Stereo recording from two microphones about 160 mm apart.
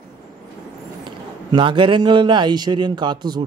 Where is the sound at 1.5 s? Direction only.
30° right (ahead or behind).